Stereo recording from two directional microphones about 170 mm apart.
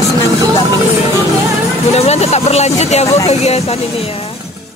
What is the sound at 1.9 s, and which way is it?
Speech, 40° left (ahead or behind).